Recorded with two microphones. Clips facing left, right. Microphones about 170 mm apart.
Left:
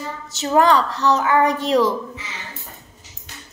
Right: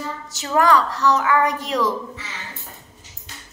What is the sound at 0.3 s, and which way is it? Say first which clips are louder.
A woman's voice: left 2 dB; 25° left (ahead or behind).